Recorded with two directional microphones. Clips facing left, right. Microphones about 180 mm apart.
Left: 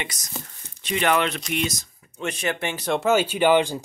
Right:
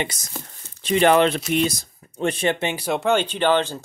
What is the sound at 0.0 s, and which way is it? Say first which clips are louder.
Speech: right 5 dB; 30° right (ahead or behind).